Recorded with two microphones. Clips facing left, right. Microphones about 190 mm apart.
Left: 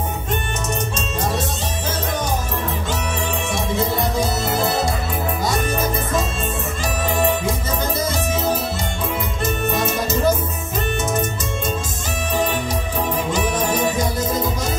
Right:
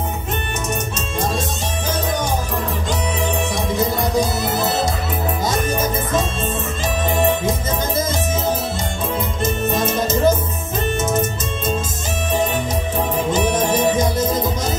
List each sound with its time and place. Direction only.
9.4 s music: 20° right (ahead or behind)